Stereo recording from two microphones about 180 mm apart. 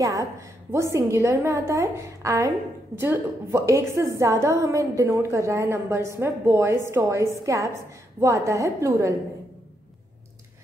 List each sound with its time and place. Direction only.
0.0 s a woman's voice: 15° right (ahead or behind)